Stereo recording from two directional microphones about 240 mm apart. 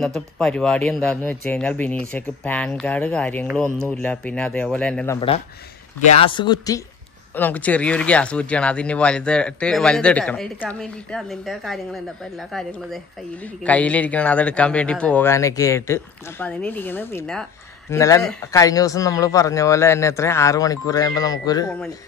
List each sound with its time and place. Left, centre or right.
0.0 s speech: centre
6.2 s speech: centre